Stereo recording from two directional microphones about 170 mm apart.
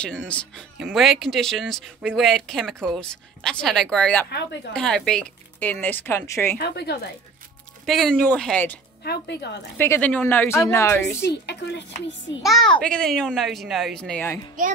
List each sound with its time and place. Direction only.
0.3 s a woman's voice: 5° left (ahead or behind)
6.6 s a woman's voice: 75° left (ahead or behind)
7.8 s a woman's voice: centre (ahead or behind)
9.0 s speech: 75° left (ahead or behind)
9.8 s speech: 10° left (ahead or behind)
12.4 s a woman's voice: 5° left (ahead or behind)